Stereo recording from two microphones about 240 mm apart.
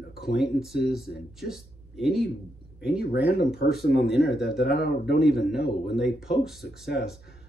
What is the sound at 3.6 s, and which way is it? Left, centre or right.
Speech, left.